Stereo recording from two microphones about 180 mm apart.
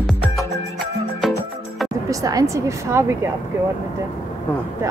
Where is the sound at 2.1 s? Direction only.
20° right (ahead or behind).